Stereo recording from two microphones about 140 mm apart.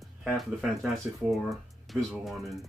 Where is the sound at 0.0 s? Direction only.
Centre (ahead or behind).